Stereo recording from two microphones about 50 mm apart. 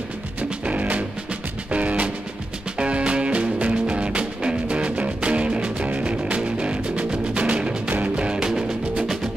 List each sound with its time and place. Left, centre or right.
0.4 s music: right